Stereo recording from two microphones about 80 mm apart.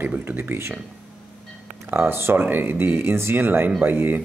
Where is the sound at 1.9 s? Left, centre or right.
Right.